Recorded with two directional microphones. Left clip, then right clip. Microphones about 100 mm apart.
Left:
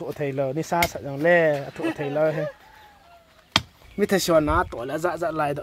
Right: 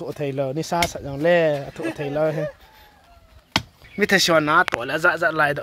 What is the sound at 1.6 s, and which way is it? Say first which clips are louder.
Speech: even; 5° left (ahead or behind).